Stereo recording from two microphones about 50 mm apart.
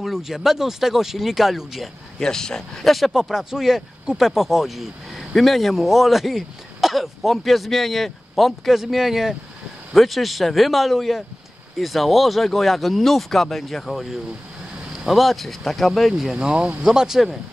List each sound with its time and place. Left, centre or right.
0.0 s a man's voice: centre
2.1 s speech: centre
3.2 s a man's voice: centre
15.0 s a man's voice: centre
16.3 s speech: centre